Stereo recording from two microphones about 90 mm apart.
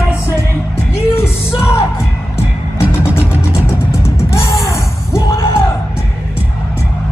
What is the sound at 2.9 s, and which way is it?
Music, 25° left (ahead or behind).